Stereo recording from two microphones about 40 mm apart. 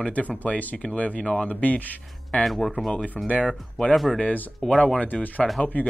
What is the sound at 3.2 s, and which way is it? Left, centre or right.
Speech, centre.